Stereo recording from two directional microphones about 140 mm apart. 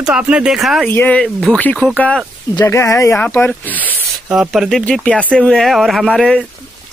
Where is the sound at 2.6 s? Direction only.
20° left (ahead or behind).